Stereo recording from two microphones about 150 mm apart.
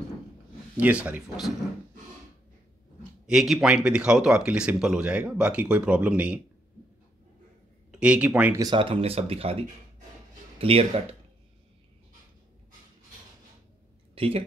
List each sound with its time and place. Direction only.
0.7 s speech: 10° right (ahead or behind)
3.3 s speech: 5° right (ahead or behind)
8.0 s speech: 5° right (ahead or behind)
8.5 s speech: 30° right (ahead or behind)
14.1 s speech: 40° right (ahead or behind)